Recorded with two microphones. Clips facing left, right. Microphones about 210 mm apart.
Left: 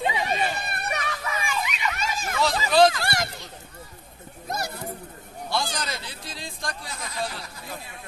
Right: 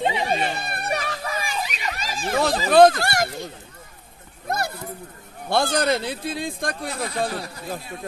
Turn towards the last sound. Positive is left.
turn(degrees=-55)  # may be behind; listen again after turning